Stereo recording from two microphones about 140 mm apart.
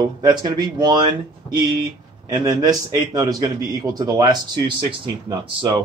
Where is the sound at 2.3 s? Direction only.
25° right (ahead or behind).